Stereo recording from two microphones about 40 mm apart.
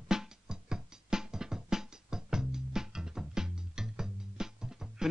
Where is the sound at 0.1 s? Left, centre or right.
Centre.